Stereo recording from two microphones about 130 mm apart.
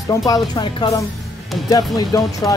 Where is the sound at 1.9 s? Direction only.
25° left (ahead or behind).